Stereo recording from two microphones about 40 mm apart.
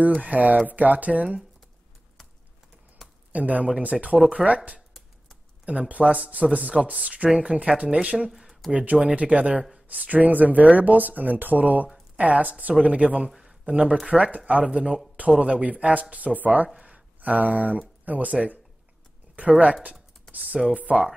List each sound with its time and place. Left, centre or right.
0.2 s speech: right
3.0 s a sound: centre
3.3 s speech: right
5.7 s speech: right
8.3 s a sound: centre
8.7 s speech: right
13.4 s a sound: centre
14.0 s speech: right
16.6 s speech: right
19.6 s speech: right